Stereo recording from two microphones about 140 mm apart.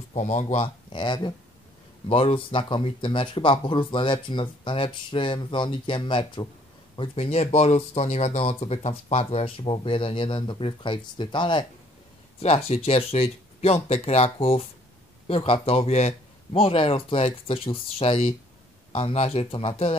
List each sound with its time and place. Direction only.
0.1 s speech: 60° left (ahead or behind)
0.9 s speech: 35° left (ahead or behind)
12.4 s speech: 45° left (ahead or behind)